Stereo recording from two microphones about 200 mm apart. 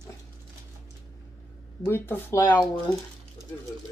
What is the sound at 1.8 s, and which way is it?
Speech, 10° left (ahead or behind).